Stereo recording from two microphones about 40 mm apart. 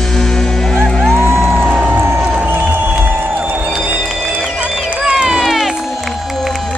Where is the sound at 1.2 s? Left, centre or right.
Right.